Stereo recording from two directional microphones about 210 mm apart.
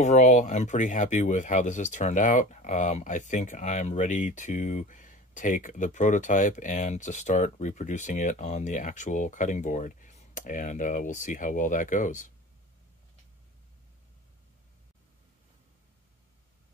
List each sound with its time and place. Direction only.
0.0 s speech: 35° left (ahead or behind)